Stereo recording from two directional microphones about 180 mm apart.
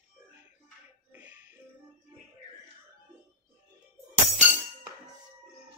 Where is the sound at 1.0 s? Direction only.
10° right (ahead or behind).